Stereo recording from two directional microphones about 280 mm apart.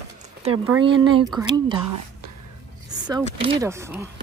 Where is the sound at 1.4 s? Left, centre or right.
Centre.